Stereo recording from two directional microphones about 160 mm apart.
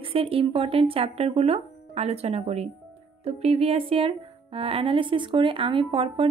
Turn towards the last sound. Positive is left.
turn(degrees=-35)  # may be behind; listen again after turning